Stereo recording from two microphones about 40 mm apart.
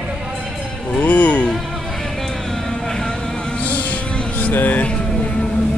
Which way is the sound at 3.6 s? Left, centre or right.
Left.